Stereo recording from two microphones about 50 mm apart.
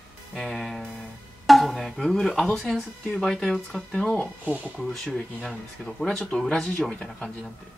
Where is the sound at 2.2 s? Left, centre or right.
Centre.